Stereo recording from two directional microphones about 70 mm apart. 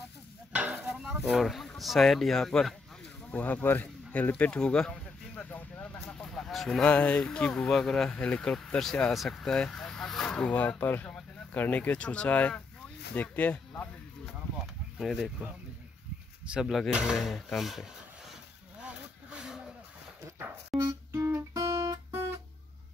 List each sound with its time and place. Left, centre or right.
0.5 s a sound: centre
0.8 s speech: centre
3.3 s speech: left
4.6 s speech: centre
5.3 s speech: left; by 6.8 s centre
6.8 s speech: centre
15.0 s speech: centre
16.4 s speech: centre
18.8 s vehicle: centre
20.7 s speech: centre
21.1 s guitar: right